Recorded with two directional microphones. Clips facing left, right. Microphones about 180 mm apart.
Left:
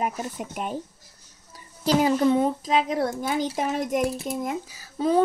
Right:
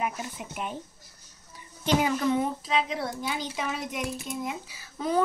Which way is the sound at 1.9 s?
35° left (ahead or behind).